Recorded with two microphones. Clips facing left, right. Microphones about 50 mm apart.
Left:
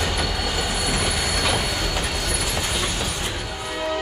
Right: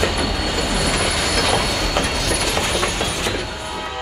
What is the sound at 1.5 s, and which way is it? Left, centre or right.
Train, right.